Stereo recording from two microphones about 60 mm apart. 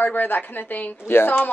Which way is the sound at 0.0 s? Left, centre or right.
Left.